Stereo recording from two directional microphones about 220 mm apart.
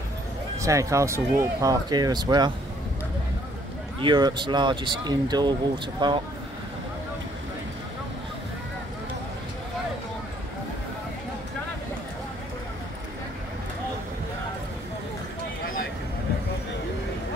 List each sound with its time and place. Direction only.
0.6 s speech: 15° right (ahead or behind)
4.0 s speech: 20° right (ahead or behind)
15.6 s a sound: 40° left (ahead or behind)